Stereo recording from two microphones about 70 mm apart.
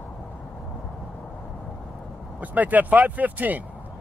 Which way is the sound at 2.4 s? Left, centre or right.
Right.